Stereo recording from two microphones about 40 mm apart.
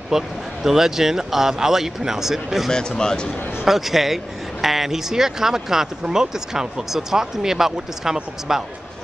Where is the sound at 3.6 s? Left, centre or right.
Centre.